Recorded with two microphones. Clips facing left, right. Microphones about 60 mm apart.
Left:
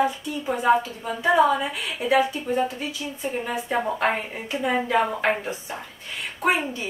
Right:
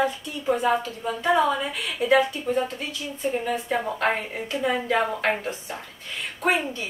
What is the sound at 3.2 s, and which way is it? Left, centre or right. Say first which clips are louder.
A woman's voice: right 3 dB; centre.